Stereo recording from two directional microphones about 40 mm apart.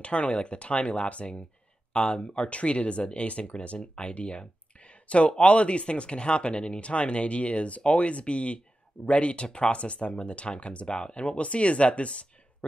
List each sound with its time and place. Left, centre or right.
0.0 s speech: left